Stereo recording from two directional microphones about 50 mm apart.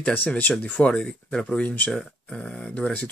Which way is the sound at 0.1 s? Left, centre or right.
Left.